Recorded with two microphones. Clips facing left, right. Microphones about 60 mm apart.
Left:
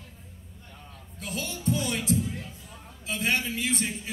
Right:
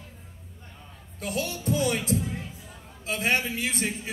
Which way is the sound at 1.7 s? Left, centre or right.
Right.